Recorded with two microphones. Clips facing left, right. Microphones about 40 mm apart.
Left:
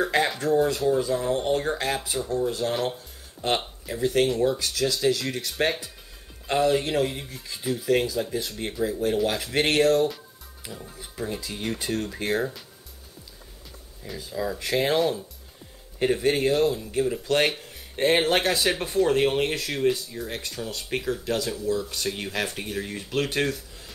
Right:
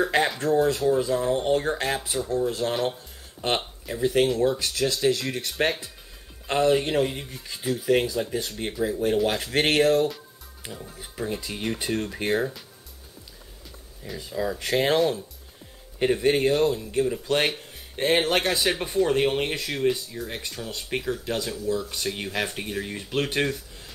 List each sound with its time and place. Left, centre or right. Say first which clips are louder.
0.0 s speech: right 1 dB; centre
3.4 s a sound: even; right
3.8 s speech: right 1 dB; centre
4.6 s speech: even; right; by 9.4 s centre
9.6 s speech: even; right
10.6 s speech: right 1 dB; centre
14.0 s speech: right 1 dB; centre